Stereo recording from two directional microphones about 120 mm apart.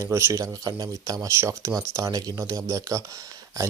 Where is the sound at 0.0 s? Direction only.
25° right (ahead or behind).